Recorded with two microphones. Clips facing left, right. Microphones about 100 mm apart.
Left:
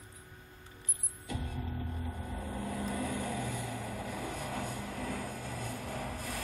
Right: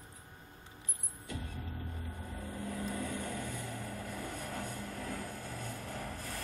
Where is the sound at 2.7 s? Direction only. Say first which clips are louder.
Left 2 dB; 10° left (ahead or behind).